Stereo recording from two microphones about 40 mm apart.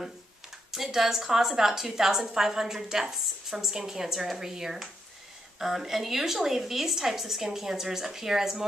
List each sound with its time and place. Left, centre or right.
0.7 s a woman's voice: centre